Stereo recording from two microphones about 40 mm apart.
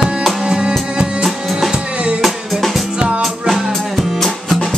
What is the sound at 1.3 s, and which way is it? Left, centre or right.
Music, centre.